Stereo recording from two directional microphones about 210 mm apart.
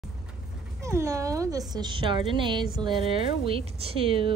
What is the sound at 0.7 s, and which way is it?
Speech, 15° right (ahead or behind).